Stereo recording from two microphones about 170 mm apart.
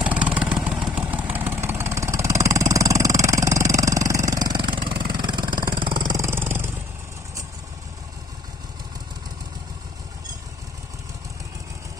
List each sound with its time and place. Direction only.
0.0 s vehicle: 10° right (ahead or behind)